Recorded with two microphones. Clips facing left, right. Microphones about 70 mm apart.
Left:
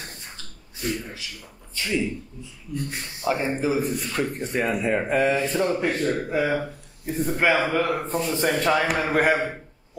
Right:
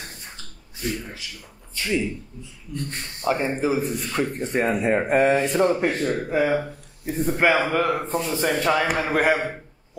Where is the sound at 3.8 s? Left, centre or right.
Centre.